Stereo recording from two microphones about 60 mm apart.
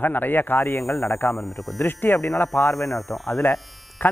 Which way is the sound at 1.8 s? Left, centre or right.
Left.